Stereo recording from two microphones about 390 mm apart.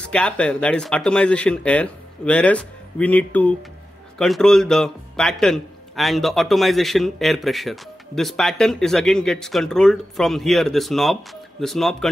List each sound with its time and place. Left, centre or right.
0.0 s a man's voice: centre